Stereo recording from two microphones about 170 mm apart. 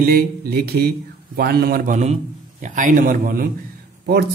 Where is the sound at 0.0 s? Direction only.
65° right (ahead or behind).